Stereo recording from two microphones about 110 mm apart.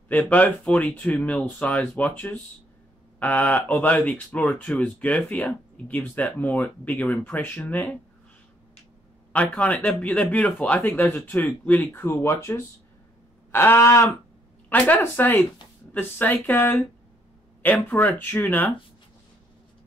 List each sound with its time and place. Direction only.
0.1 s speech: 15° left (ahead or behind)
9.3 s speech: 10° left (ahead or behind)